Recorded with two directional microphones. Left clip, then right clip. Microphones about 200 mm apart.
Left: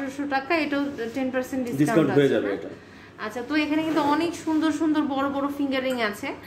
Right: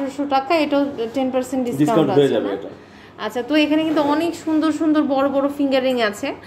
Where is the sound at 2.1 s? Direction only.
Centre (ahead or behind).